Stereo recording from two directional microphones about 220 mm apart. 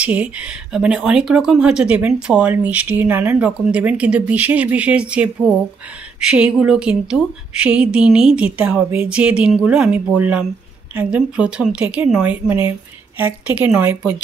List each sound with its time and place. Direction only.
0.0 s a woman's voice: 5° right (ahead or behind)